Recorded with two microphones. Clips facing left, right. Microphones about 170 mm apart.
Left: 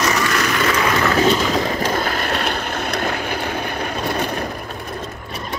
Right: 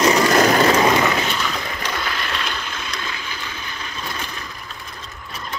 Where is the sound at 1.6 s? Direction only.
45° left (ahead or behind).